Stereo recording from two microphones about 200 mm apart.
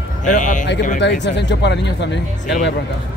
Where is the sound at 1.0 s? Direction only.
60° left (ahead or behind).